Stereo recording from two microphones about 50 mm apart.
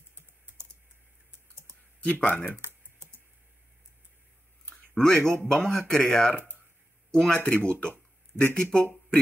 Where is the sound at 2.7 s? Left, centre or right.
Right.